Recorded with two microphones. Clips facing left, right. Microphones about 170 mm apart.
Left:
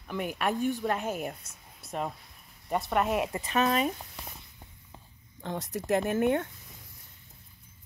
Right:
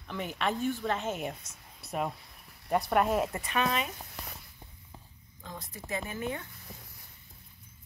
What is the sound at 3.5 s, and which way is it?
Speech, 40° left (ahead or behind).